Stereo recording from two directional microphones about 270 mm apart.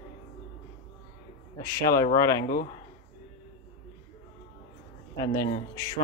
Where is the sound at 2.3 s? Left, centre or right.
Left.